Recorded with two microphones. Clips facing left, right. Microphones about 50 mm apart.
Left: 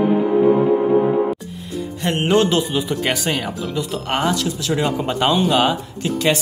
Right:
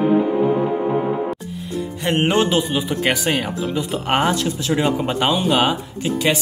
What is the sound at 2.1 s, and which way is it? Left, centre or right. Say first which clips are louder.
Speech: even; right.